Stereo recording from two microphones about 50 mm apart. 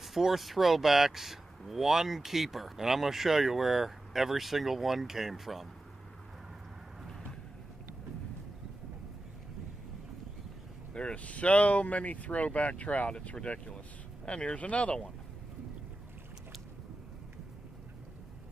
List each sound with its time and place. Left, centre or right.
0.0 s speech: centre
10.9 s speech: centre